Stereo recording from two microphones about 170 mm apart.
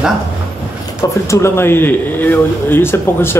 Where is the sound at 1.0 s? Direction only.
15° left (ahead or behind).